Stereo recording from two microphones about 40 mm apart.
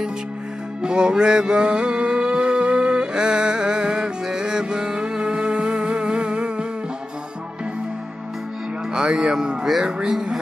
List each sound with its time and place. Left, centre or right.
0.8 s music: right
8.9 s speech: centre